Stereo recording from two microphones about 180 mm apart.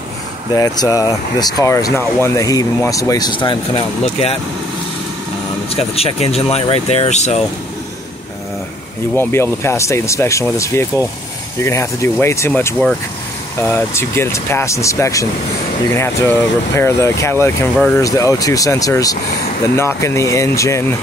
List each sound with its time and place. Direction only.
0.6 s speech: 20° left (ahead or behind)
5.7 s speech: 35° left (ahead or behind)
9.1 s speech: 15° left (ahead or behind)